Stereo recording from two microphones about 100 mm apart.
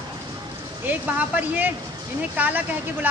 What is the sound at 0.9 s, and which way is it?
A woman's voice, 15° right (ahead or behind).